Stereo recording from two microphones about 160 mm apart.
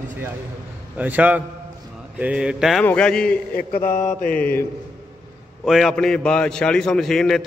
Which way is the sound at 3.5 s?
60° left (ahead or behind).